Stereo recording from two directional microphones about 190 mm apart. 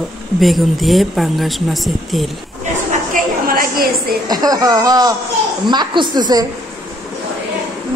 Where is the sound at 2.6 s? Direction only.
40° right (ahead or behind).